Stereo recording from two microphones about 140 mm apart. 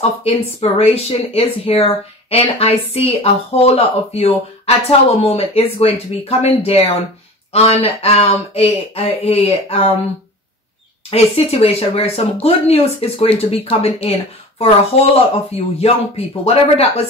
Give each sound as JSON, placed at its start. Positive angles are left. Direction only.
{"t": 0.0, "sound": "speech", "side_deg": 45}
{"t": 11.1, "sound": "speech", "side_deg": 45}